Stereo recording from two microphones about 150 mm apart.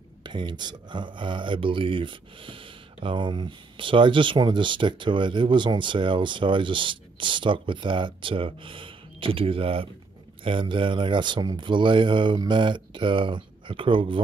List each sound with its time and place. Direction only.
0.2 s speech: 30° right (ahead or behind)